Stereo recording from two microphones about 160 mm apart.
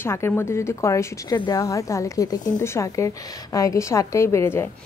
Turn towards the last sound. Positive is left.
turn(degrees=15)  # may be behind; listen again after turning